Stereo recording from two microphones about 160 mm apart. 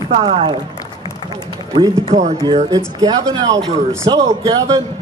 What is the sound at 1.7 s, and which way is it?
A man's voice, 25° right (ahead or behind).